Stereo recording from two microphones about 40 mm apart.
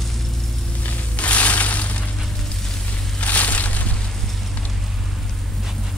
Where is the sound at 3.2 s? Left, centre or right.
Left.